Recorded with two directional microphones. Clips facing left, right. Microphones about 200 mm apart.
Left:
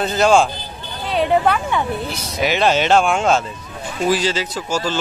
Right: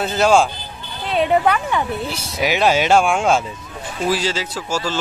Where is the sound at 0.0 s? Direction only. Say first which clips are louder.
Left 1 dB; 5° right (ahead or behind).